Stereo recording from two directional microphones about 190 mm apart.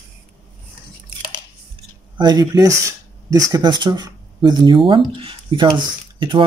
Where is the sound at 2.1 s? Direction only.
20° right (ahead or behind).